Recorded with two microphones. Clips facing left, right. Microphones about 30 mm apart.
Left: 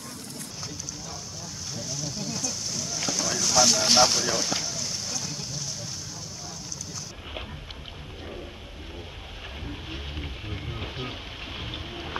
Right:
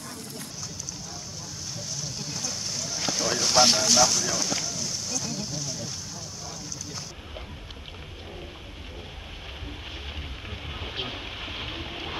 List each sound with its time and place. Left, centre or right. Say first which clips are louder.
2.7 s boat: right 1 dB; centre; by 3.8 s right
3.8 s vehicle: left 1 dB; left; by 5.1 s centre
5.2 s vehicle: right 2 dB; centre